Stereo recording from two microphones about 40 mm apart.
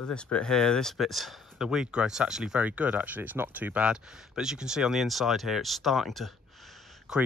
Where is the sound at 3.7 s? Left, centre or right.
Right; by 6.7 s centre.